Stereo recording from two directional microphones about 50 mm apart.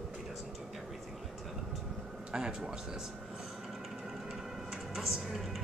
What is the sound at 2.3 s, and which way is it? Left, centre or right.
Speech, centre.